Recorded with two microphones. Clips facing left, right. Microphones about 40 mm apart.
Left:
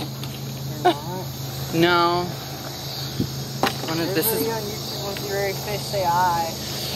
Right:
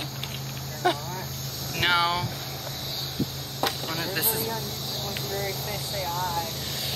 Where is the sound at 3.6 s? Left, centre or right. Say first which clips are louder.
Left 5 dB; left.